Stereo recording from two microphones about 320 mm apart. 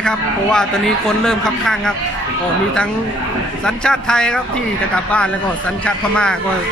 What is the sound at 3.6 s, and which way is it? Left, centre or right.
Speech, centre.